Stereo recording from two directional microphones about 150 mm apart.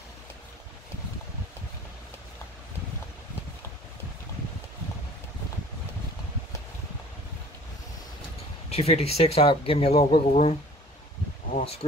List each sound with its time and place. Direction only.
8.6 s speech: 40° left (ahead or behind)
11.5 s speech: 40° left (ahead or behind)